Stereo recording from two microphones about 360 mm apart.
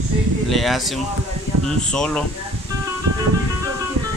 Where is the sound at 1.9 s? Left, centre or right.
Centre.